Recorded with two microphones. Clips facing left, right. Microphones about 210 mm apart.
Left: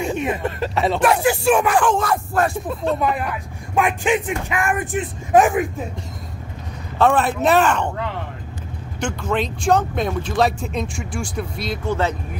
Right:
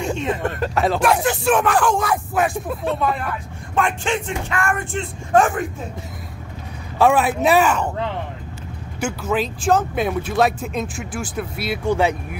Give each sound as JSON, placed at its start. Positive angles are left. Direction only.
{"t": 0.1, "sound": "a sound", "side_deg": 10}
{"t": 0.6, "sound": "speech", "side_deg": 0}
{"t": 3.0, "sound": "speech", "side_deg": 10}
{"t": 7.0, "sound": "speech", "side_deg": -10}
{"t": 9.0, "sound": "speech", "side_deg": -5}